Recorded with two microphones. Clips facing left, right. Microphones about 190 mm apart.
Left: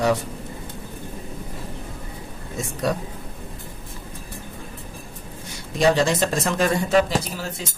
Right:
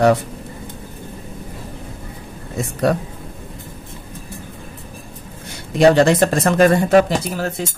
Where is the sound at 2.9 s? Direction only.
60° right (ahead or behind).